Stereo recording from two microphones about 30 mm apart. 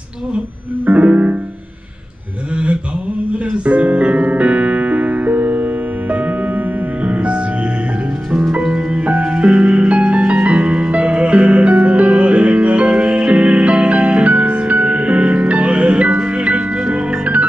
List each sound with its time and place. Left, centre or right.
0.8 s music: right
2.5 s mantra: right
3.5 s music: right
7.2 s music: right
9.2 s music: right